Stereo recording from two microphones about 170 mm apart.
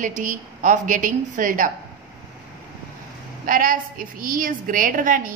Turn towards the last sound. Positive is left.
turn(degrees=-55)  # may be behind; listen again after turning